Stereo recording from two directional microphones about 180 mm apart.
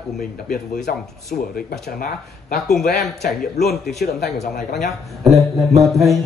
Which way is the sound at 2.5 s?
Centre (ahead or behind).